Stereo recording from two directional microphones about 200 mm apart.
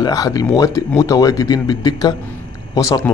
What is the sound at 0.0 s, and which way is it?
Speech, 20° left (ahead or behind).